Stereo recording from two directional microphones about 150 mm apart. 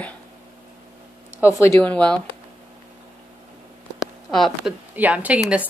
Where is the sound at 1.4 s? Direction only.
20° left (ahead or behind).